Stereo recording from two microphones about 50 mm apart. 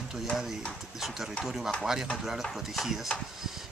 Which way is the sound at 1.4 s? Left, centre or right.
Centre.